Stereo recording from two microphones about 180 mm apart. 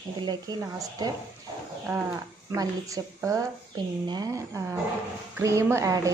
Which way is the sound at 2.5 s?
20° right (ahead or behind).